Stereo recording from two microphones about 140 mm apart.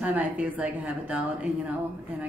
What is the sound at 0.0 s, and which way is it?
A woman's voice, 10° right (ahead or behind).